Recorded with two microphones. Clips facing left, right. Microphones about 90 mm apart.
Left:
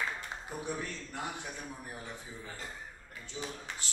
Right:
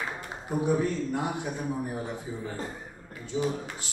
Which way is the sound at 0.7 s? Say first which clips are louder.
Right 12 dB; 15° right (ahead or behind).